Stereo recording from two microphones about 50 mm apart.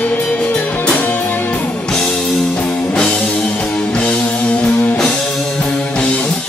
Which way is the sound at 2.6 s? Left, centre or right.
Left.